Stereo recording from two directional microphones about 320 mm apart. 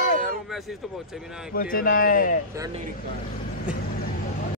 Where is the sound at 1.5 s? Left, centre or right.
Left.